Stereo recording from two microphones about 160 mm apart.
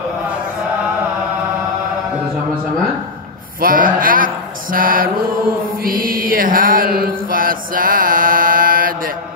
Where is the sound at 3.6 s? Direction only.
60° right (ahead or behind).